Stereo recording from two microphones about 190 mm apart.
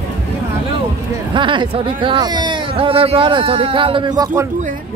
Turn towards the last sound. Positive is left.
turn(degrees=-15)  # may be behind; listen again after turning